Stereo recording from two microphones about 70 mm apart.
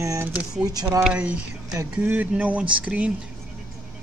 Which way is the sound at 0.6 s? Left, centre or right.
Right.